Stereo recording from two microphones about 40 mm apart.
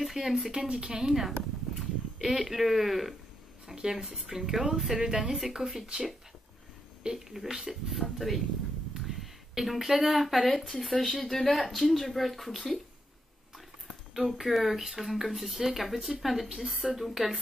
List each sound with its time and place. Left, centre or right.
0.0 s speech: centre
0.7 s a woman's voice: centre
3.6 s a sound: centre
4.3 s a woman's voice: centre
7.2 s a woman's voice: centre
7.9 s speech: centre
14.1 s speech: centre